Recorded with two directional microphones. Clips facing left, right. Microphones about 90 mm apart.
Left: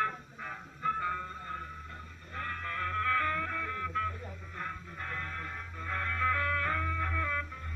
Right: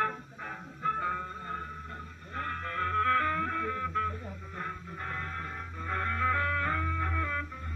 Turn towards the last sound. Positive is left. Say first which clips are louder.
# right 1 dB
turn(degrees=-20)  # may be behind; listen again after turning